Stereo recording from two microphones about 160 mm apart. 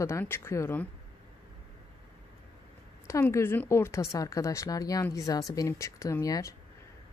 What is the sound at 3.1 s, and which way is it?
A woman's voice, 20° left (ahead or behind).